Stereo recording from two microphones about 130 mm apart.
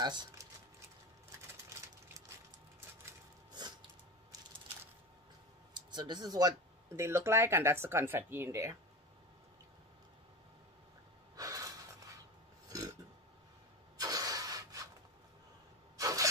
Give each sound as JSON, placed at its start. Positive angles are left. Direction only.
{"t": 0.0, "sound": "a sound", "side_deg": -35}
{"t": 5.8, "sound": "speech", "side_deg": -35}
{"t": 7.0, "sound": "speech", "side_deg": -20}
{"t": 11.3, "sound": "gasp", "side_deg": -25}
{"t": 12.6, "sound": "burping", "side_deg": -25}
{"t": 13.9, "sound": "a sound", "side_deg": -30}
{"t": 16.0, "sound": "rub", "side_deg": -25}